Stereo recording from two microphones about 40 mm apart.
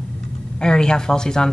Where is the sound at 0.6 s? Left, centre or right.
Left.